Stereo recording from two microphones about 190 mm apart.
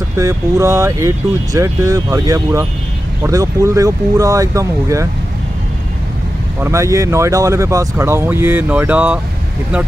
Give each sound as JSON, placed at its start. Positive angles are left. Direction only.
{"t": 0.2, "sound": "speech", "side_deg": -15}
{"t": 6.6, "sound": "speech", "side_deg": -15}